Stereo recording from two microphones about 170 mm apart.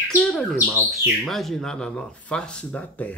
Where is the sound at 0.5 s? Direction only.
10° right (ahead or behind).